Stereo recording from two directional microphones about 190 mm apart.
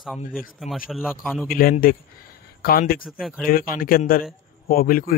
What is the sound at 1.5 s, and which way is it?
A man's voice, 50° left (ahead or behind).